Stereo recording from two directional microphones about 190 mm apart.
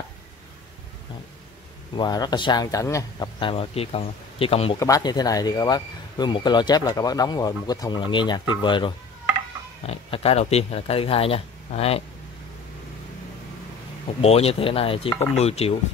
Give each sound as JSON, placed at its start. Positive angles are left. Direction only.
{"t": 2.0, "sound": "speech", "side_deg": 20}
{"t": 4.7, "sound": "speech", "side_deg": 20}
{"t": 14.2, "sound": "speech", "side_deg": 30}